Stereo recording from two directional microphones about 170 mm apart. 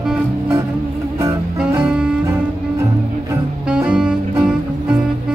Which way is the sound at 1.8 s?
5° right (ahead or behind).